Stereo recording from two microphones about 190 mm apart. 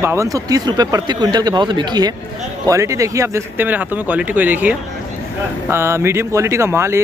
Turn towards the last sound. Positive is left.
turn(degrees=-15)  # may be behind; listen again after turning